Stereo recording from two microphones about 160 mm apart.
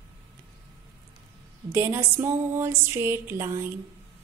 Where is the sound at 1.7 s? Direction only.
15° right (ahead or behind).